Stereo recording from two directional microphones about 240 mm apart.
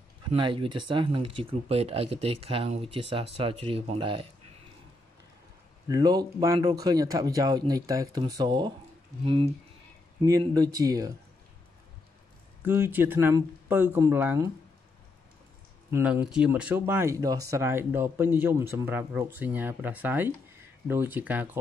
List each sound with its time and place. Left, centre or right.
0.3 s speech: right
5.9 s speech: centre
12.6 s speech: centre
15.9 s speech: centre